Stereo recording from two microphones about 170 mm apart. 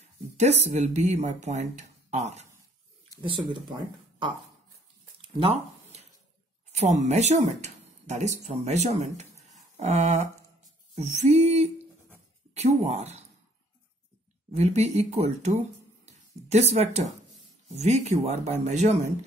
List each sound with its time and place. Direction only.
0.0 s speech: 40° right (ahead or behind)
3.3 s speech: 30° right (ahead or behind)
5.2 s a sound: 35° right (ahead or behind)
6.7 s speech: 40° right (ahead or behind)
14.5 s speech: 40° right (ahead or behind)